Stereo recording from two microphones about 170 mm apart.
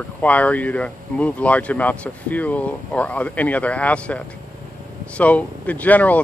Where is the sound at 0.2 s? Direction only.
10° left (ahead or behind).